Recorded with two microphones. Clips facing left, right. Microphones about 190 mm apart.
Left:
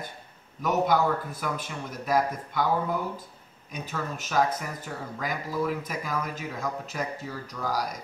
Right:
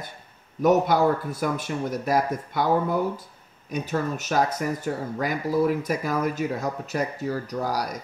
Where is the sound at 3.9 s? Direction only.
40° right (ahead or behind).